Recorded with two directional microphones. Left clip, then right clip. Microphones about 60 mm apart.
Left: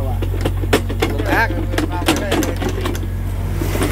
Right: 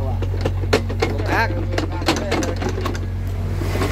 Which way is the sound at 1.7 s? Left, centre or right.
Centre.